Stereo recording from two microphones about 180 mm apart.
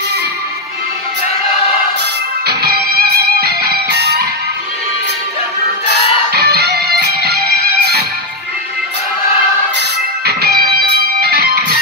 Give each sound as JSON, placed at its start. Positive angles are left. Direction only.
{"t": 2.4, "sound": "music", "side_deg": -60}
{"t": 6.3, "sound": "music", "side_deg": -60}
{"t": 9.8, "sound": "music", "side_deg": -65}